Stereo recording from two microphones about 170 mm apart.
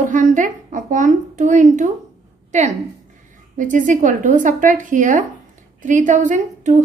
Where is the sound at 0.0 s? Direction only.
45° right (ahead or behind).